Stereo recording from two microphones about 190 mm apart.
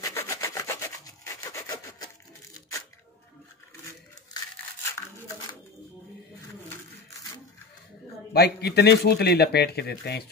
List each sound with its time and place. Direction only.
0.0 s sawing: 15° left (ahead or behind)
8.3 s speech: 60° left (ahead or behind)